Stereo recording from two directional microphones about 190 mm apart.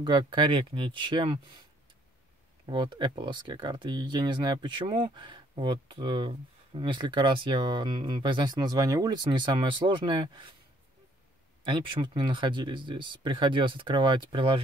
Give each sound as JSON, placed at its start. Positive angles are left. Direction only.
{"t": 0.0, "sound": "speech", "side_deg": -25}
{"t": 2.6, "sound": "speech", "side_deg": -25}
{"t": 11.6, "sound": "speech", "side_deg": -25}